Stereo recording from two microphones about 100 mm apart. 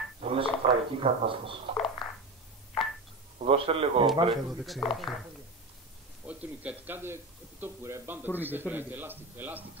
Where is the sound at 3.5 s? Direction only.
70° right (ahead or behind).